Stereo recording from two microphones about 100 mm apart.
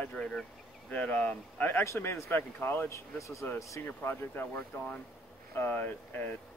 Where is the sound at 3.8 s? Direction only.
20° left (ahead or behind).